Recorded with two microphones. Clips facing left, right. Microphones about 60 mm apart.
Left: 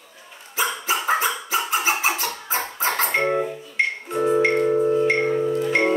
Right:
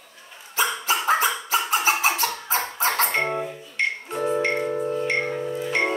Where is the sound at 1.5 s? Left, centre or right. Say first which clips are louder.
Even; centre.